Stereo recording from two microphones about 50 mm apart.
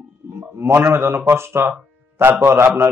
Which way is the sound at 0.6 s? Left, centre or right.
Right.